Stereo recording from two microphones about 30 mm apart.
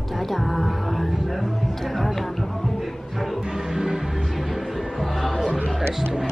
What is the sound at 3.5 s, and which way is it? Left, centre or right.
Music, centre.